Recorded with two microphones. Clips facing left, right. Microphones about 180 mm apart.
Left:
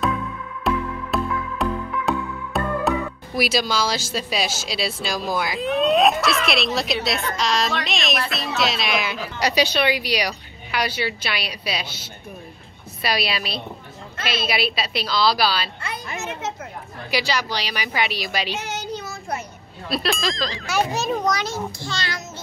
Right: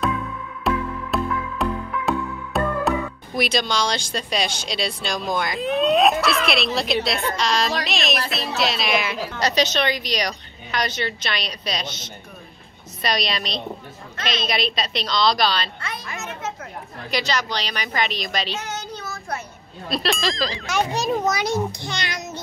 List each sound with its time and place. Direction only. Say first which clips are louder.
0.7 s music: even; centre (ahead or behind)
3.3 s speech: left 1 dB; 5° left (ahead or behind)
9.4 s a woman's voice: left 1 dB; 10° left (ahead or behind)
17.1 s a woman's voice: even; 10° left (ahead or behind)
19.9 s speech: even; centre (ahead or behind)
21.3 s a child's voice: right 2 dB; 15° right (ahead or behind)